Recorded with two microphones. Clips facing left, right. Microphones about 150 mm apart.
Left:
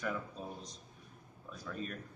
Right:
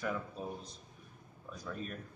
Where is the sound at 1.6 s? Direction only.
Centre (ahead or behind).